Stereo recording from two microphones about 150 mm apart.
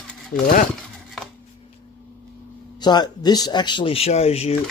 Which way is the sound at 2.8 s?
30° left (ahead or behind).